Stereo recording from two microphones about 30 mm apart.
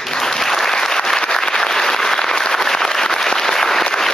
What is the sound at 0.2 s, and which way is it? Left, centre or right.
Applause, centre.